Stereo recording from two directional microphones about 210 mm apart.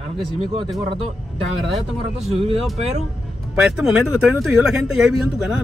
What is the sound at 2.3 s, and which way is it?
Speech, 25° right (ahead or behind).